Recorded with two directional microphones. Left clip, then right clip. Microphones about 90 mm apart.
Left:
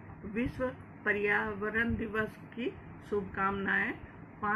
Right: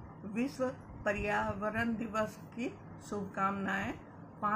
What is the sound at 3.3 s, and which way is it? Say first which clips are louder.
Speech: left 2 dB; 35° right (ahead or behind).